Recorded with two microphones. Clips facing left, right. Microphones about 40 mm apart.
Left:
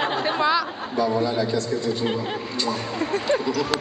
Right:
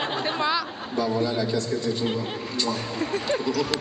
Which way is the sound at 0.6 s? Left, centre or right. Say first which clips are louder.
Left 3 dB; centre.